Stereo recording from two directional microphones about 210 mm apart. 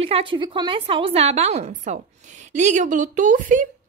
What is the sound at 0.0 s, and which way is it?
A woman's voice, 25° right (ahead or behind).